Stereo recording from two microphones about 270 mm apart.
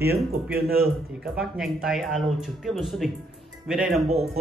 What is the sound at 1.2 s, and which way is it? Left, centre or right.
A man's voice, centre.